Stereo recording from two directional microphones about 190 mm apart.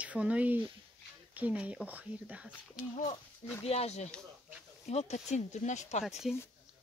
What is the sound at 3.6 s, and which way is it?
Speech, 35° left (ahead or behind).